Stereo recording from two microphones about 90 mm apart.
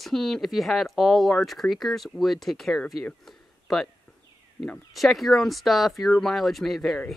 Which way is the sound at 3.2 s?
5° left (ahead or behind).